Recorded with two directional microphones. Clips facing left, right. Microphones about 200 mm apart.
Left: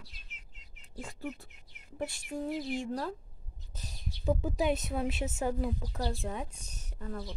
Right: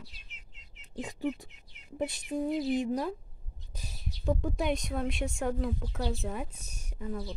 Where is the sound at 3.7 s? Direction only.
10° right (ahead or behind).